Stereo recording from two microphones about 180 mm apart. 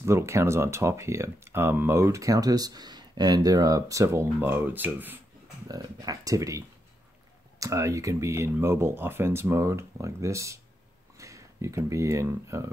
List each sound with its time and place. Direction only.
0.0 s speech: 15° right (ahead or behind)
5.7 s speech: 20° right (ahead or behind)
7.6 s speech: 15° right (ahead or behind)